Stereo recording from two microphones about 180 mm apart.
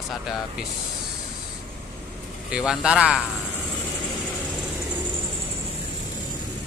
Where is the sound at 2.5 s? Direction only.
5° right (ahead or behind).